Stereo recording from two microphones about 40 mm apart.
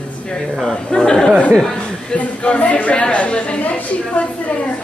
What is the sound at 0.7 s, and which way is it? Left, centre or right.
A man's voice, centre.